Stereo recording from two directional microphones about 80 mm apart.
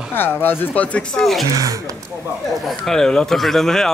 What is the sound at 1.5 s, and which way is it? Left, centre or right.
Speech, right.